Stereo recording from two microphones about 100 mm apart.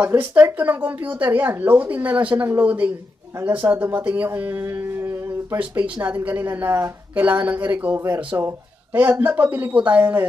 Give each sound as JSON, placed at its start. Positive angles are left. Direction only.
{"t": 0.0, "sound": "speech", "side_deg": -20}
{"t": 5.6, "sound": "speech", "side_deg": -15}